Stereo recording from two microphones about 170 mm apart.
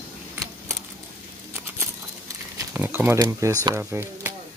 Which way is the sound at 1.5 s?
15° right (ahead or behind).